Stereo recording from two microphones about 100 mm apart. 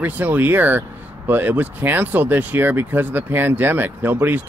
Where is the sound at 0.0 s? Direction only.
20° right (ahead or behind).